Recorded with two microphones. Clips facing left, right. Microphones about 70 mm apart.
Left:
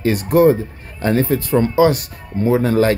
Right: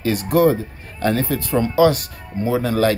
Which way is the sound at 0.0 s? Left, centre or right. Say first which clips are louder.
Left 3 dB; left.